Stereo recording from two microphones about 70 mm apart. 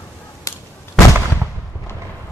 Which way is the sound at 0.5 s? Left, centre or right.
Left.